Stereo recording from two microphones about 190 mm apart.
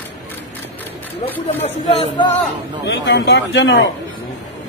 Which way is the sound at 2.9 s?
70° left (ahead or behind).